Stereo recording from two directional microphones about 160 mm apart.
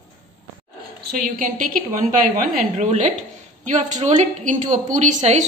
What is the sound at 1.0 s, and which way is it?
A woman's voice, 60° right (ahead or behind).